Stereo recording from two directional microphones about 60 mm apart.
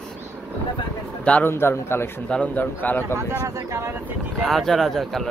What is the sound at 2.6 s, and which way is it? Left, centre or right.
Speech, left.